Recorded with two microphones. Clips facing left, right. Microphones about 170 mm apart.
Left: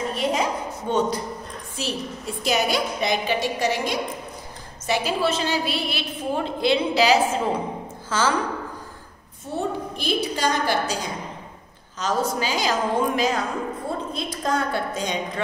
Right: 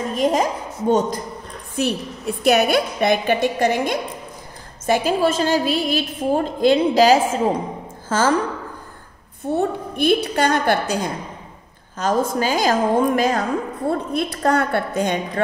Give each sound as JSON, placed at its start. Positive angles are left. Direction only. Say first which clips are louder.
{"t": 0.1, "sound": "a woman's voice", "louder": "right 7 dB", "side_deg": -45}
{"t": 1.8, "sound": "a woman's voice", "louder": "right 7 dB", "side_deg": -60}
{"t": 9.4, "sound": "a woman's voice", "louder": "right 6 dB", "side_deg": -60}
{"t": 13.8, "sound": "a woman's voice", "louder": "right 7 dB", "side_deg": -65}